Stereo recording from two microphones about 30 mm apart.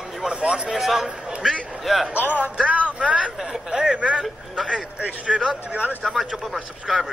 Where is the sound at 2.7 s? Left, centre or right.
Right.